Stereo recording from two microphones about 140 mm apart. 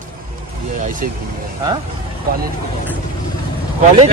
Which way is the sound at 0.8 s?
70° right (ahead or behind).